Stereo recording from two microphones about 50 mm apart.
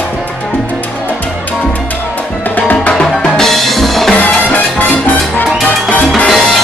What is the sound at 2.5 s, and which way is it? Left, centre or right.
Music, left.